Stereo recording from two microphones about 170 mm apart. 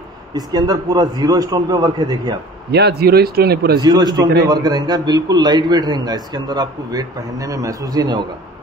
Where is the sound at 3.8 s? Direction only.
25° right (ahead or behind).